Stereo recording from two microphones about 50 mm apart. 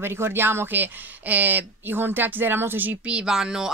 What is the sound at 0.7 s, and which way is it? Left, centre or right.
Speech, right.